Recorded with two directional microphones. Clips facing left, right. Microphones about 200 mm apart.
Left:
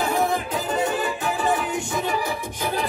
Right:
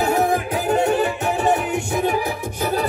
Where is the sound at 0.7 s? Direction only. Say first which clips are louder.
Right 7 dB; 65° right (ahead or behind).